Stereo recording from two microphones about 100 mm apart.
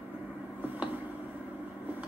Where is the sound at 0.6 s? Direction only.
15° right (ahead or behind).